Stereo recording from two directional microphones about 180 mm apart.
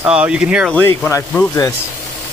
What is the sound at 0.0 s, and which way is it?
Speech, 5° right (ahead or behind).